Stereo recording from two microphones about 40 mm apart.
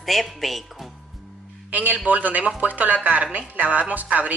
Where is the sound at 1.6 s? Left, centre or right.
Right.